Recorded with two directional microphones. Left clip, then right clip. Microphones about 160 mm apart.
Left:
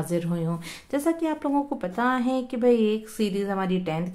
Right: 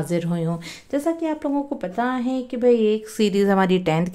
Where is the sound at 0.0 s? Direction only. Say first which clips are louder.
Right 4 dB; 25° right (ahead or behind).